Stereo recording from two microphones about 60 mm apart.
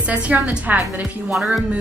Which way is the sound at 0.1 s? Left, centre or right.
Right.